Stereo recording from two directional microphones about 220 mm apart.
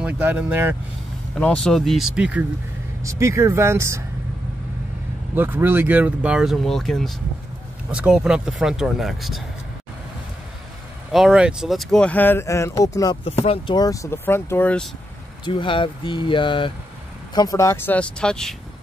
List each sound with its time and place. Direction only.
0.0 s speech: 5° right (ahead or behind)
1.3 s speech: 5° left (ahead or behind); by 4.0 s 10° right (ahead or behind)
5.3 s speech: 10° right (ahead or behind)
11.1 s speech: centre (ahead or behind); by 13.2 s 15° left (ahead or behind)
13.2 s speech: 25° left (ahead or behind); by 14.9 s 5° left (ahead or behind)
15.4 s speech: 20° left (ahead or behind); by 18.6 s 5° left (ahead or behind)